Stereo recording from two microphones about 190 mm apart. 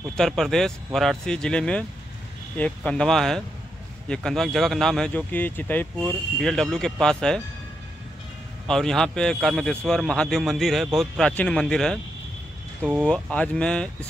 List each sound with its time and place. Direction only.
0.1 s a man's voice: centre (ahead or behind)
8.6 s a man's voice: 5° left (ahead or behind)